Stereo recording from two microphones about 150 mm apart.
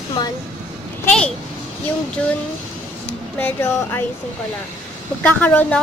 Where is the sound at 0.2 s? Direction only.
30° left (ahead or behind).